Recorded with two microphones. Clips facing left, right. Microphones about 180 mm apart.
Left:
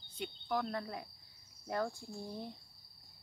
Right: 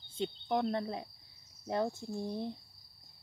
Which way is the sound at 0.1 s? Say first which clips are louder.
Right 4 dB; 25° right (ahead or behind).